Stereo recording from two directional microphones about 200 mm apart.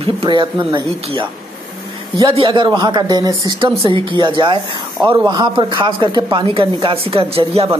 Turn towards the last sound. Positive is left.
turn(degrees=-30)  # may be behind; listen again after turning